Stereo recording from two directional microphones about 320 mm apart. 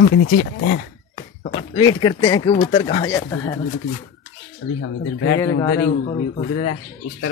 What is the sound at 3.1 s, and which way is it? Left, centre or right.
Speech, centre.